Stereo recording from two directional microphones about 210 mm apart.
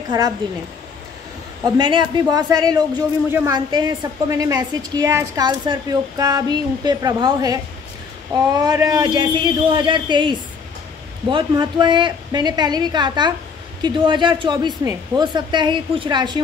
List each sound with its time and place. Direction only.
0.4 s a woman's voice: 20° right (ahead or behind)